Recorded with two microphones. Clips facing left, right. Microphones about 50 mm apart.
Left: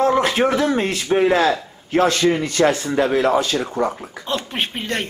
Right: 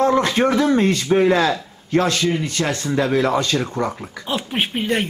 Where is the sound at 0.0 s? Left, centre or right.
Centre.